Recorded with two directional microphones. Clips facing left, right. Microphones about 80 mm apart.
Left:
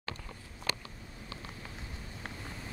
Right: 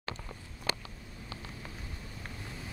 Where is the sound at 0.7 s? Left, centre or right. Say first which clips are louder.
Right 2 dB; right.